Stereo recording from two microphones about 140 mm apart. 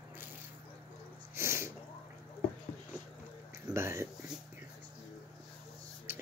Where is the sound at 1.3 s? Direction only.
20° right (ahead or behind).